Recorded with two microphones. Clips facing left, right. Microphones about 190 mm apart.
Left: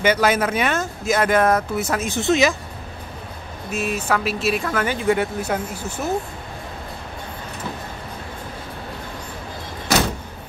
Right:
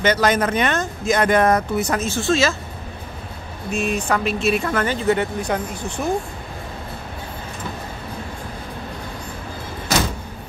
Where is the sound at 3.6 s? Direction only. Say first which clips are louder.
Right 1 dB; 5° left (ahead or behind).